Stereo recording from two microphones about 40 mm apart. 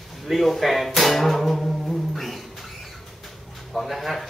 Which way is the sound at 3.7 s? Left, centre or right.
Centre.